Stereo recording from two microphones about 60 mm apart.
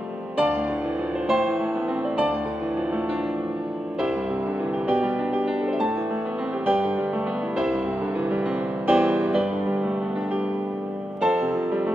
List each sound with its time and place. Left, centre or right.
8.8 s music: right
9.3 s music: centre